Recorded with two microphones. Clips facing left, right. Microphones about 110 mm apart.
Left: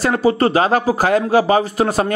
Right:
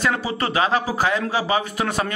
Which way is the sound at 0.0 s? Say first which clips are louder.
Left 8 dB; 45° left (ahead or behind).